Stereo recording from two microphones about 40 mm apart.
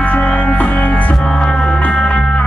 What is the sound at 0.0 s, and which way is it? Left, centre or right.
Music, left.